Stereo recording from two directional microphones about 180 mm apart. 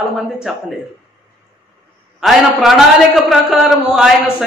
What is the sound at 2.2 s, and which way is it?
A man's voice, centre (ahead or behind).